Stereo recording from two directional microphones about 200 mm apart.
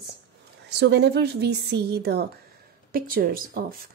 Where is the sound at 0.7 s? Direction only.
55° right (ahead or behind).